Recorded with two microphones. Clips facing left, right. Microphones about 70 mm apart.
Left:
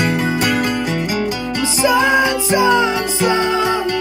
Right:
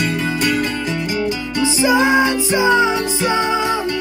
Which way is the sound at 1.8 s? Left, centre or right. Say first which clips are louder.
Left 1 dB; right.